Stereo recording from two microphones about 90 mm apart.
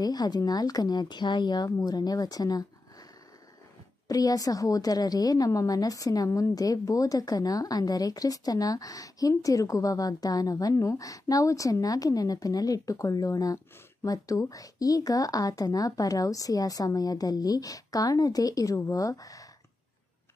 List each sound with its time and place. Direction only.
0.0 s speech: 50° left (ahead or behind)
4.1 s a woman's voice: 40° left (ahead or behind)